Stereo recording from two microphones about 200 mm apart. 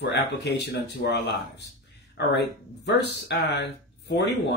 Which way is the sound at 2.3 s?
60° left (ahead or behind).